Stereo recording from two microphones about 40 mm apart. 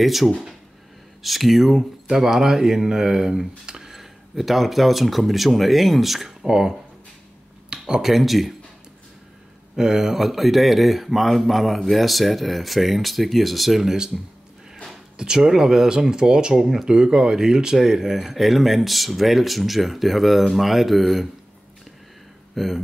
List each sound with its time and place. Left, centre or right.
0.0 s speech: centre
2.0 s speech: centre
7.7 s a sound: centre
8.0 s speech: centre
9.8 s speech: centre
15.1 s speech: centre
16.6 s speech: centre
16.9 s speech: centre
22.6 s speech: centre